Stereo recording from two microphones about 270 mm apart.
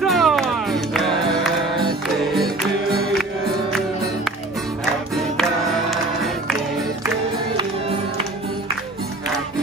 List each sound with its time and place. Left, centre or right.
0.0 s music: centre
5.1 s music: centre